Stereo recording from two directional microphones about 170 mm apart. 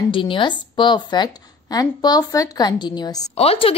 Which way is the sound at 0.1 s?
30° left (ahead or behind).